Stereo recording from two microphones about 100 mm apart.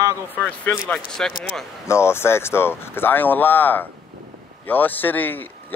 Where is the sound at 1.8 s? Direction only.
25° left (ahead or behind).